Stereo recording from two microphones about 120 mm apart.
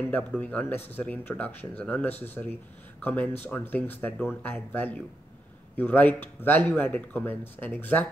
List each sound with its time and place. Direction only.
0.1 s speech: 10° left (ahead or behind)